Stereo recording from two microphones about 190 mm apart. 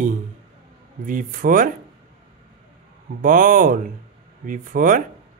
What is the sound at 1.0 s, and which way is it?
Speech, 45° right (ahead or behind).